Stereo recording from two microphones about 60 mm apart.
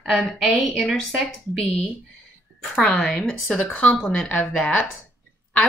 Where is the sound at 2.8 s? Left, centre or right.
Centre.